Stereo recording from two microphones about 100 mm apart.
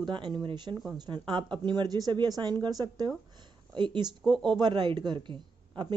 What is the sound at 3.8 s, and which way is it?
Speech, 55° right (ahead or behind).